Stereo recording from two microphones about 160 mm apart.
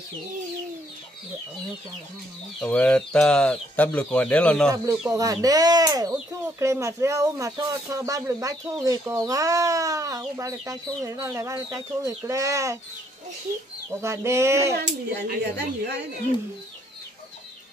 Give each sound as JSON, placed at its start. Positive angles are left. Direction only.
{"t": 2.6, "sound": "speech", "side_deg": 5}
{"t": 5.1, "sound": "speech", "side_deg": -20}
{"t": 14.0, "sound": "chicken", "side_deg": -15}
{"t": 14.7, "sound": "a woman's voice", "side_deg": -90}